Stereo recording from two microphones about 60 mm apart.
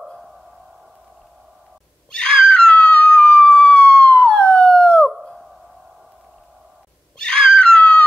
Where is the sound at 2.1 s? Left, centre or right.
Centre.